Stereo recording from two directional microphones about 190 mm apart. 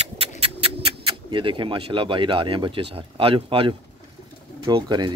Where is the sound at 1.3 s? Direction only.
25° right (ahead or behind).